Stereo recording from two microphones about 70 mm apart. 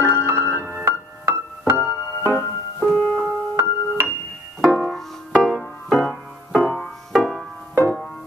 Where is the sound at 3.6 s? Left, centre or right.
Right.